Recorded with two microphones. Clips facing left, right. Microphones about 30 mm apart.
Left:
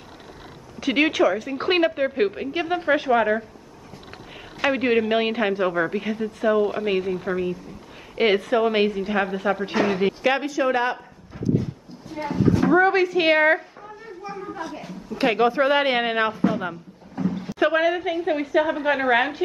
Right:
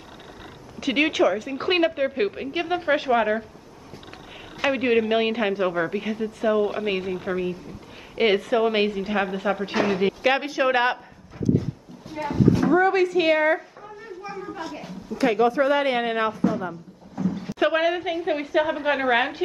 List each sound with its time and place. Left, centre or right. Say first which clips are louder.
0.7 s a woman's voice: left 1 dB; centre
4.6 s a woman's voice: left 1 dB; centre
10.4 s speech: right 1 dB; right
12.2 s speech: right 1 dB; left
12.7 s a woman's voice: left 1 dB; centre
13.3 s speech: left 5 dB; left
15.1 s a sound: even; left
15.4 s speech: left 2 dB; left
16.6 s a sound: left 2 dB; left
17.5 s a woman's voice: left 1 dB; centre